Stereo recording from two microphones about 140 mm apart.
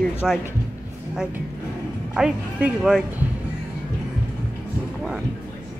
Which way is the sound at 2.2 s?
10° right (ahead or behind).